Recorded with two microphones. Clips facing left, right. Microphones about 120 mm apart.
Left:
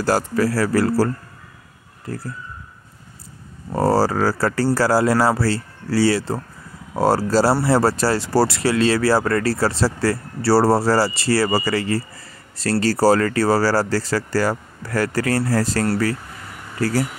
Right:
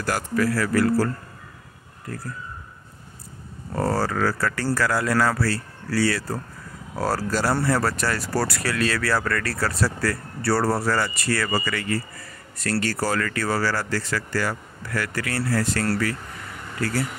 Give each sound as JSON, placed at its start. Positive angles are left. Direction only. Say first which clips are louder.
{"t": 0.0, "sound": "speech", "louder": "left 5 dB", "side_deg": 35}
{"t": 3.7, "sound": "speech", "louder": "left 6 dB", "side_deg": 30}